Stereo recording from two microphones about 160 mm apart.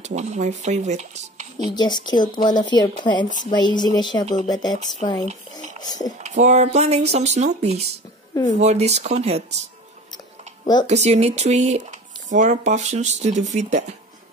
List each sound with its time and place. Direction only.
0.0 s speech: 45° right (ahead or behind)
1.7 s a woman's voice: 25° left (ahead or behind)
6.2 s speech: 45° right (ahead or behind)
10.1 s a sound: 25° left (ahead or behind)
10.9 s speech: 45° right (ahead or behind)